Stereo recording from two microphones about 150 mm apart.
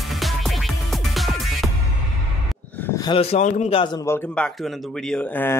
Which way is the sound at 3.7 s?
30° left (ahead or behind).